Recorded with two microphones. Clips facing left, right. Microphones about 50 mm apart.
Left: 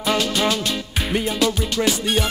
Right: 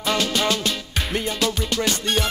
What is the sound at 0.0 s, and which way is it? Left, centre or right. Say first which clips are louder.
Music: left 2 dB; centre.